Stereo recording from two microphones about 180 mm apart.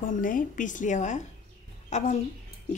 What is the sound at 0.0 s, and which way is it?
A woman's voice, 50° left (ahead or behind).